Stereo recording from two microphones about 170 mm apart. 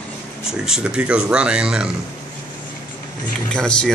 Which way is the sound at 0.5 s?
5° right (ahead or behind).